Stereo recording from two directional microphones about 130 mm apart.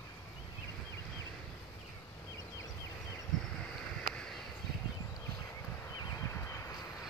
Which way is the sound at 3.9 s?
5° left (ahead or behind).